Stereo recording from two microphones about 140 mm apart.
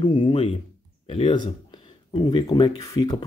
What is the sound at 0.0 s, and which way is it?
Speech, 35° left (ahead or behind).